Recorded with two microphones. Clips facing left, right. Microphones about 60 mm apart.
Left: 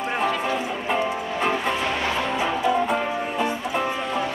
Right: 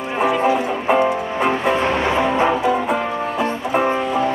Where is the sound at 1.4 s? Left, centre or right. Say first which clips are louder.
Right 6 dB; centre.